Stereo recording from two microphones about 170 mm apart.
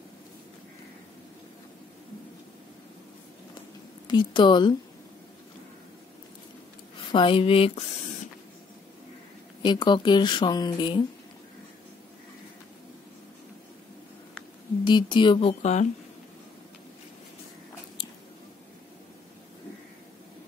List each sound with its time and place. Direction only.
4.1 s speech: 25° left (ahead or behind)
7.1 s speech: 30° left (ahead or behind)
9.6 s speech: 25° left (ahead or behind)
14.9 s speech: 30° left (ahead or behind)